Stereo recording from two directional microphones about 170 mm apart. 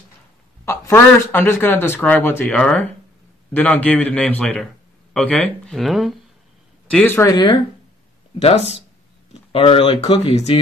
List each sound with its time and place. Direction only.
0.7 s speech: 15° left (ahead or behind)
8.4 s speech: 40° left (ahead or behind)